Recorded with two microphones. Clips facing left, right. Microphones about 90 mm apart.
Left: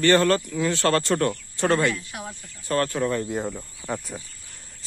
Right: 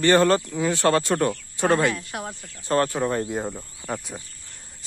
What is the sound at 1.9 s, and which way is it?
Speech, 50° right (ahead or behind).